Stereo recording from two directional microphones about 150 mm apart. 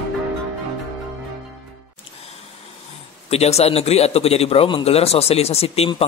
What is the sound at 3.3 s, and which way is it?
A man's voice, 45° left (ahead or behind).